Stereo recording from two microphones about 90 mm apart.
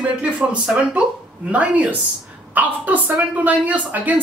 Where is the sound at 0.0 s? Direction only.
10° right (ahead or behind).